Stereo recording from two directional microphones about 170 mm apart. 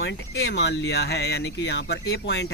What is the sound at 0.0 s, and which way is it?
Speech, 85° left.